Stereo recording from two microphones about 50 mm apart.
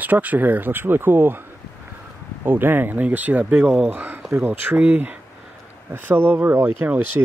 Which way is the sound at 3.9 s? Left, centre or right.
Right.